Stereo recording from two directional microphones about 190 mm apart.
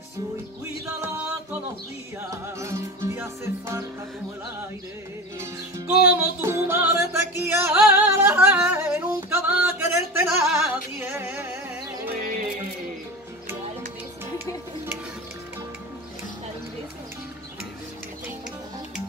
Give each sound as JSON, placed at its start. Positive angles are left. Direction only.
{"t": 2.4, "sound": "music", "side_deg": -15}
{"t": 5.4, "sound": "music", "side_deg": -10}